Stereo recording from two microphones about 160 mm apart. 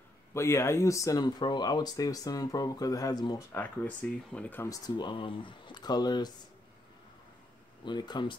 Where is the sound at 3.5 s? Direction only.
10° left (ahead or behind).